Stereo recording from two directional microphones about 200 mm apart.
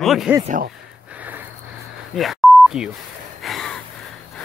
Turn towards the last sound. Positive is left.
turn(degrees=0)  # may be behind; listen again after turning